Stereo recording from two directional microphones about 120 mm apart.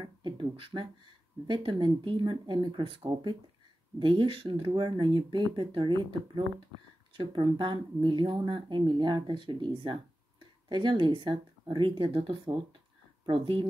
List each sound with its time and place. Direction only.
0.0 s speech: 40° right (ahead or behind)